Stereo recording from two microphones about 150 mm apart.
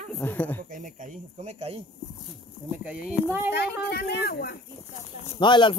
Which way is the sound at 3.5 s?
90° left.